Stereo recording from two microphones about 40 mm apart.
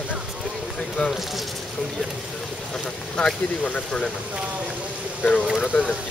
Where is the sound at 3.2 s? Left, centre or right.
Left.